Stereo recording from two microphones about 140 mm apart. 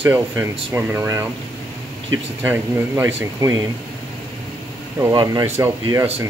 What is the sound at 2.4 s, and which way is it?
Speech, 15° right (ahead or behind).